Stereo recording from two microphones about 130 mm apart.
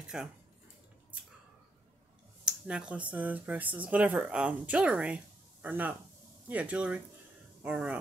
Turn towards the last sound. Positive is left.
turn(degrees=-10)  # may be behind; listen again after turning